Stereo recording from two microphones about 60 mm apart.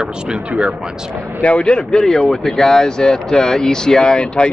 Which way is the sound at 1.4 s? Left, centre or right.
Centre.